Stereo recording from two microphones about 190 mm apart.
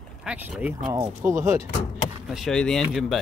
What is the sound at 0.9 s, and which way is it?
Speech, 15° right (ahead or behind).